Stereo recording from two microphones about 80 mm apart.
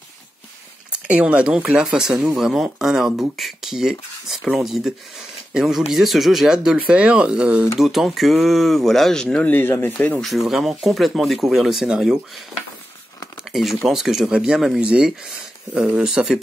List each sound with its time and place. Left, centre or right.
1.0 s speech: centre
7.8 s speech: centre
9.5 s speech: left
10.2 s speech: centre
13.5 s speech: centre